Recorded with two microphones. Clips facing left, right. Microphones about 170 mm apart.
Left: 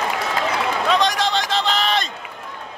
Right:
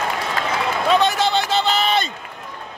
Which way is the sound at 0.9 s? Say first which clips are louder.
Right 3 dB; 5° right (ahead or behind).